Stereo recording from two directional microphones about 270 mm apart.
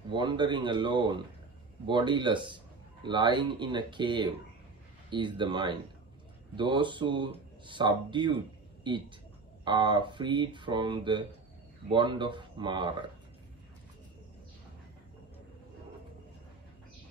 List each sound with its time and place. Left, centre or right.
0.1 s speech: centre